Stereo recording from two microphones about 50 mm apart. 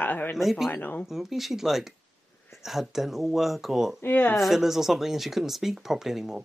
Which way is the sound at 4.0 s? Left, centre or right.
Left.